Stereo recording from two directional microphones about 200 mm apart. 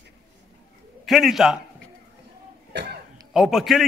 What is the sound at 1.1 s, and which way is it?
Speech, centre (ahead or behind).